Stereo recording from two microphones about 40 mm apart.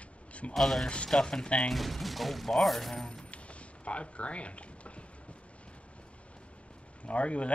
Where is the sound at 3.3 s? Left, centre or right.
Left.